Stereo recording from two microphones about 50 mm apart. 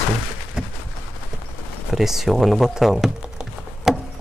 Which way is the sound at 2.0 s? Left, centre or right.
Centre.